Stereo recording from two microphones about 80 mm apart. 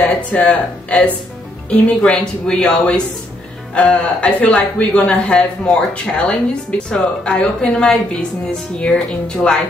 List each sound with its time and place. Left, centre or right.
0.0 s a woman's voice: centre